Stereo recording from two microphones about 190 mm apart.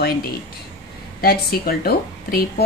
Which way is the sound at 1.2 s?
50° left (ahead or behind).